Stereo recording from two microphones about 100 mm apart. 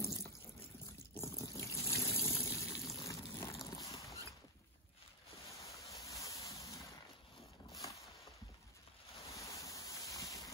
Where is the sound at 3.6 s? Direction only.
35° left (ahead or behind).